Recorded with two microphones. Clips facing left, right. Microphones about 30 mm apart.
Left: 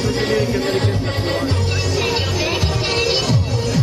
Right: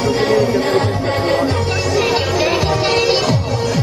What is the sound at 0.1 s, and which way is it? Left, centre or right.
Music, centre.